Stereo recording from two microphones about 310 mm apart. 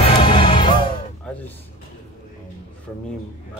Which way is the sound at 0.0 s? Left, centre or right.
Centre.